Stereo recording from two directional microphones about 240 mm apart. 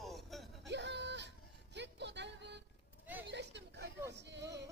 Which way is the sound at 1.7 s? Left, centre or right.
Right.